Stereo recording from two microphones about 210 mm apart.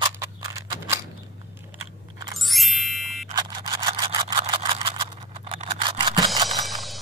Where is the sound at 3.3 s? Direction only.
20° right (ahead or behind).